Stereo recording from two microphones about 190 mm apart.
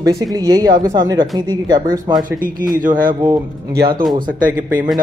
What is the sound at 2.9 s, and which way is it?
Speech, 25° right (ahead or behind).